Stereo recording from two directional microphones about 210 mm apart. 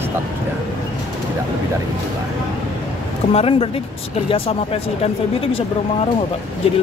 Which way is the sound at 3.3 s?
30° left (ahead or behind).